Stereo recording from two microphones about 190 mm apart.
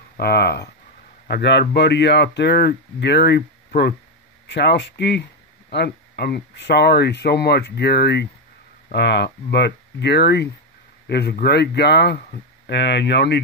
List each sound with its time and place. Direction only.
0.2 s speech: 55° left (ahead or behind)